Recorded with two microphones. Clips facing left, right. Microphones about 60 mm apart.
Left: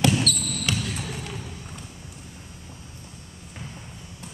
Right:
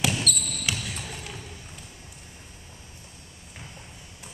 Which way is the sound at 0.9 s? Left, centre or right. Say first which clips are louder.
Left 4 dB; centre.